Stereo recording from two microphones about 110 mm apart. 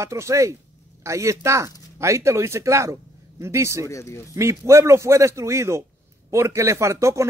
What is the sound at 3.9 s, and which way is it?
Speech, 25° left (ahead or behind).